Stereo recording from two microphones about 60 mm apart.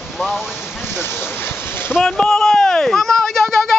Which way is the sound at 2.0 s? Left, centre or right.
Centre.